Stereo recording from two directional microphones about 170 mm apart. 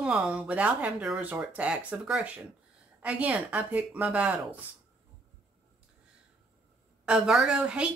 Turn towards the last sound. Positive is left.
turn(degrees=-5)  # may be behind; listen again after turning